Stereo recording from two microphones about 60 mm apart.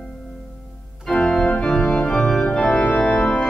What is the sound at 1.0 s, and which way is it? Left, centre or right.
Organ, centre.